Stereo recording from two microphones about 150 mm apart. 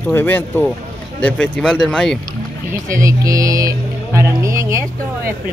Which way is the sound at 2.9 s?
20° right (ahead or behind).